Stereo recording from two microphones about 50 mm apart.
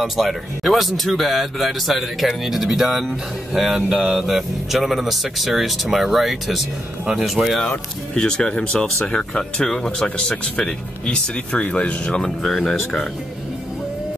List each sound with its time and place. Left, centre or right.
0.0 s speech: centre
8.1 s speech: centre
12.2 s speech: centre